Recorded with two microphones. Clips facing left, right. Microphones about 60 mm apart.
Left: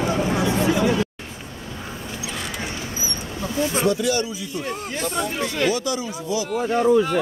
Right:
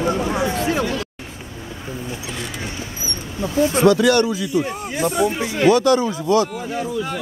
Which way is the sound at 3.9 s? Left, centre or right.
Right.